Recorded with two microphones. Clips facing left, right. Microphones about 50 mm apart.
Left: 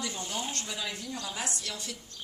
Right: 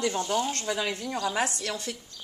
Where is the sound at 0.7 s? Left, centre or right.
Right.